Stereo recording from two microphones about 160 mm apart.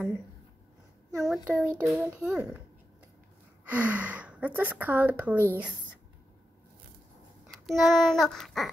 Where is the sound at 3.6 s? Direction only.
10° right (ahead or behind).